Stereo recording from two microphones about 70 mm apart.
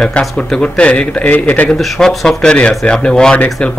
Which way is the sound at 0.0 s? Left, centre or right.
Centre.